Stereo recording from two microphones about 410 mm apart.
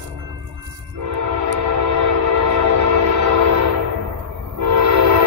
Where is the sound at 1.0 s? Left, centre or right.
Right.